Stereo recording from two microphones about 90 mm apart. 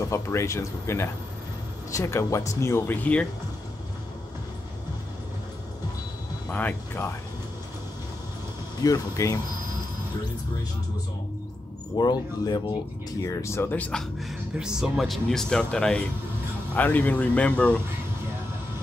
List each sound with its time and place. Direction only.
0.0 s speech: 35° left (ahead or behind)
3.0 s speech: 15° left (ahead or behind)
6.5 s speech: 20° left (ahead or behind)
8.8 s speech: 40° left (ahead or behind)
12.0 s speech: 50° left (ahead or behind)
13.2 s speech: 35° left (ahead or behind)
13.7 s speech: 15° left (ahead or behind)
14.6 s speech: 5° right (ahead or behind); by 17.7 s 15° left (ahead or behind)